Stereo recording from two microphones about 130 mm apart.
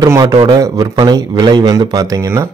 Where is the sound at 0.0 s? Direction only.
30° right (ahead or behind).